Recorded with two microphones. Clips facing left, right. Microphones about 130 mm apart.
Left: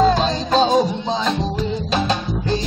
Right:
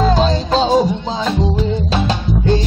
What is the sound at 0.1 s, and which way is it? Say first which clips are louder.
Music: right 3 dB; 30° right (ahead or behind).